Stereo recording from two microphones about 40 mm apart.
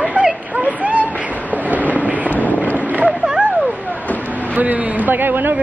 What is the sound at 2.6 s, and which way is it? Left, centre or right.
Boat, left.